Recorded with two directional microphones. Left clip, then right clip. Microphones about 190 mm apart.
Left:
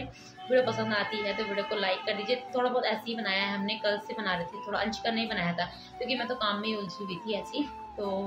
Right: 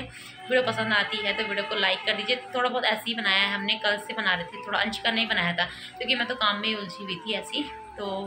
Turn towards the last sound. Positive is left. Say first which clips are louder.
# right 4 dB
turn(degrees=5)  # may be behind; listen again after turning